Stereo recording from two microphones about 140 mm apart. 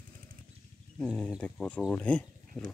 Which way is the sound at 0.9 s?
5° left (ahead or behind).